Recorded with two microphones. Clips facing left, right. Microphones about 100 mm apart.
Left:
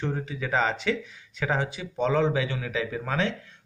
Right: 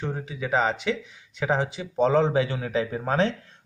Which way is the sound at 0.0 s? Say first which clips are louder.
Even; 15° right (ahead or behind).